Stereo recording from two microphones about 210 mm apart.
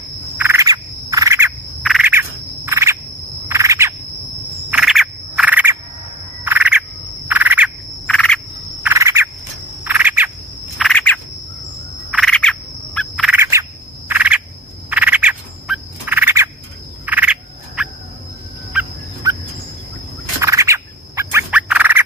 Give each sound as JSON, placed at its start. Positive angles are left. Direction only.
{"t": 0.4, "sound": "bird", "side_deg": -15}
{"t": 1.9, "sound": "insect", "side_deg": -5}
{"t": 3.4, "sound": "a sound", "side_deg": -15}
{"t": 4.6, "sound": "a sound", "side_deg": -5}
{"t": 6.4, "sound": "frog", "side_deg": -10}
{"t": 7.2, "sound": "bird", "side_deg": -10}
{"t": 8.1, "sound": "frog", "side_deg": 5}
{"t": 8.8, "sound": "a sound", "side_deg": -15}
{"t": 9.8, "sound": "insect", "side_deg": -10}
{"t": 10.8, "sound": "bird", "side_deg": 5}
{"t": 17.0, "sound": "frog", "side_deg": -10}
{"t": 19.2, "sound": "fowl", "side_deg": -15}
{"t": 20.3, "sound": "bird", "side_deg": -15}